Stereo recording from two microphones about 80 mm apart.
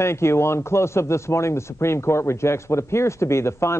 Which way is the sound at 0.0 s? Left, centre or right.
Left.